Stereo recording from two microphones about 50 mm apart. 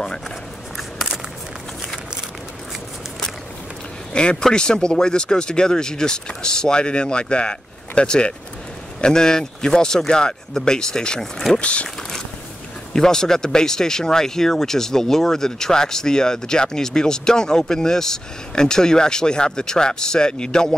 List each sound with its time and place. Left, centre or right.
0.7 s a sound: centre
4.1 s speech: centre
11.6 s speech: left
12.9 s speech: centre